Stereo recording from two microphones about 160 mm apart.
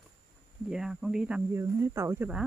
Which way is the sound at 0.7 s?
5° right (ahead or behind).